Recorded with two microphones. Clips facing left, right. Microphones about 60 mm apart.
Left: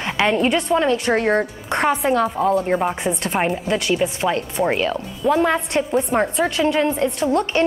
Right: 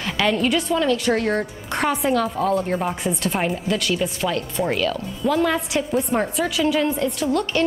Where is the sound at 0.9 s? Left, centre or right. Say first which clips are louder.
Left 2 dB; left.